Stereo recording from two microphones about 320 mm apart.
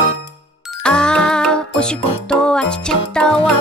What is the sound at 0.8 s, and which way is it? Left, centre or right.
Music, centre.